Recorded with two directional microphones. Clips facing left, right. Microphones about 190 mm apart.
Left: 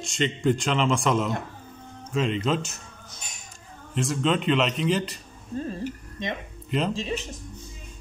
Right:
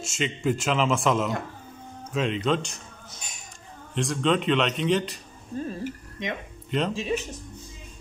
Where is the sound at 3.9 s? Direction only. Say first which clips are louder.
Right 1 dB; centre (ahead or behind).